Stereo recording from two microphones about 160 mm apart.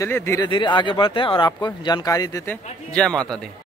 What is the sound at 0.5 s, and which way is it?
Speech, 30° left (ahead or behind).